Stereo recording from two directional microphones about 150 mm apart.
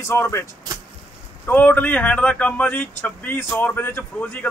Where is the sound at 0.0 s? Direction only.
15° left (ahead or behind).